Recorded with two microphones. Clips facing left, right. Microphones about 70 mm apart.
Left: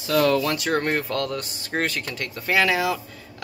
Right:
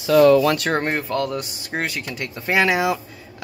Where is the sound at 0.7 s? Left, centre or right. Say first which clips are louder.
Right 1 dB; centre.